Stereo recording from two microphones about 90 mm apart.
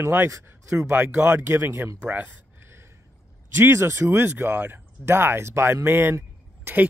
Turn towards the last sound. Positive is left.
turn(degrees=-25)  # may be behind; listen again after turning